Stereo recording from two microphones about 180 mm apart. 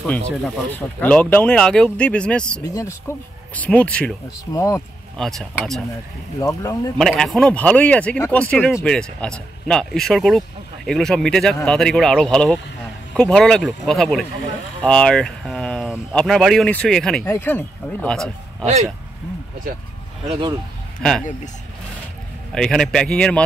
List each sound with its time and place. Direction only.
0.7 s speech: 10° left (ahead or behind)
2.6 s speech: 15° left (ahead or behind)
4.5 s speech: 15° left (ahead or behind)
5.1 s speech: centre (ahead or behind)
6.4 s speech: 15° left (ahead or behind)
7.0 s speech: centre (ahead or behind)
20.2 s speech: 30° right (ahead or behind)
21.0 s speech: 5° left (ahead or behind)
22.5 s speech: 5° left (ahead or behind)